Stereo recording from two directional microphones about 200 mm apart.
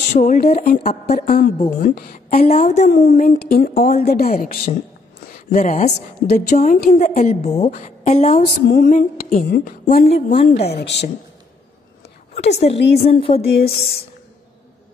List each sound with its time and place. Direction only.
0.2 s a woman's voice: 40° left (ahead or behind)
0.7 s a woman's voice: 50° left (ahead or behind)
2.3 s a woman's voice: 35° left (ahead or behind)
3.1 s a woman's voice: 45° left (ahead or behind)
8.4 s speech: 50° left (ahead or behind)
10.1 s a sound: 30° left (ahead or behind)
10.6 s a woman's voice: 55° left (ahead or behind)
12.4 s a woman's voice: 30° left (ahead or behind)
13.0 s a sound: 30° left (ahead or behind)